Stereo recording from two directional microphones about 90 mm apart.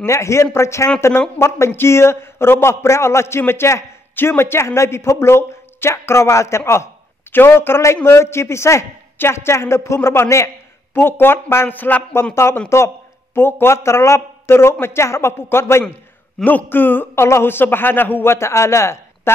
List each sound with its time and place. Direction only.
0.0 s a man's voice: 30° left (ahead or behind)